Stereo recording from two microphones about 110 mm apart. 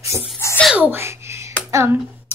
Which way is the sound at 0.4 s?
25° left (ahead or behind).